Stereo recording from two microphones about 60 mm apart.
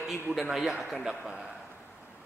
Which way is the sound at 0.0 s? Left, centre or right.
Centre.